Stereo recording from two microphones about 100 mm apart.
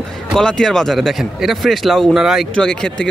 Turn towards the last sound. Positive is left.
turn(degrees=5)  # may be behind; listen again after turning